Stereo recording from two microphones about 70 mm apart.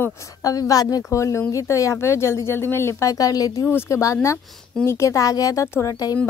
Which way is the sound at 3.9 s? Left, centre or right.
Left.